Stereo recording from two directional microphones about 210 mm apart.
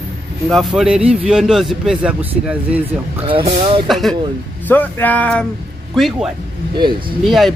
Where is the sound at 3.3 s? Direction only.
25° right (ahead or behind).